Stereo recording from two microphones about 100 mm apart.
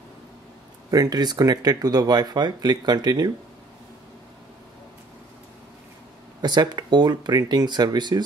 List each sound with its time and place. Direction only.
0.8 s speech: 40° right (ahead or behind)
6.4 s speech: 45° right (ahead or behind)